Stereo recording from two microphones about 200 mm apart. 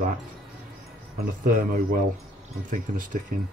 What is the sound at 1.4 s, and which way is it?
Speech, 45° right (ahead or behind).